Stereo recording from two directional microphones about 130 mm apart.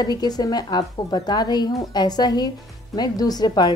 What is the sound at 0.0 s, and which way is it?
A woman's voice, 30° left (ahead or behind).